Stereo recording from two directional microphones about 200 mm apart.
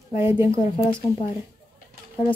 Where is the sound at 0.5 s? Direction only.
25° left (ahead or behind).